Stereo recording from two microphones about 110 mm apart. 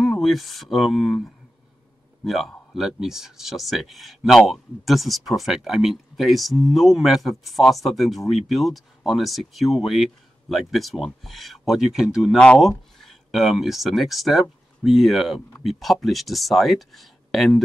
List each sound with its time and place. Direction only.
0.0 s speech: centre (ahead or behind)